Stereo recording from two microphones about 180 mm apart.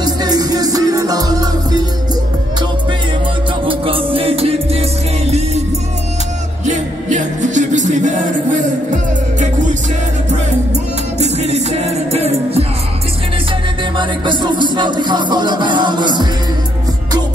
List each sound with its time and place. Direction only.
0.0 s music: 20° right (ahead or behind)
3.6 s music: 30° right (ahead or behind)
6.6 s music: 40° right (ahead or behind)
11.1 s music: 40° right (ahead or behind)
13.9 s music: 25° right (ahead or behind)